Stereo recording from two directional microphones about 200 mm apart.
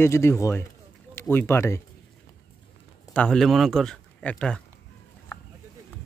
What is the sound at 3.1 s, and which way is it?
Speech, 5° left (ahead or behind).